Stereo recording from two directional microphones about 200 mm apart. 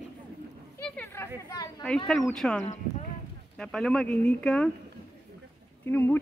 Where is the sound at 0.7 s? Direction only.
10° left (ahead or behind).